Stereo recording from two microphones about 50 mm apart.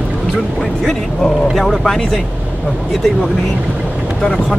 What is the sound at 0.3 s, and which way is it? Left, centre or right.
Speech, centre.